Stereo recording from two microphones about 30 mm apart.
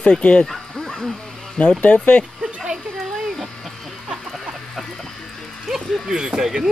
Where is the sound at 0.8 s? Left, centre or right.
Centre.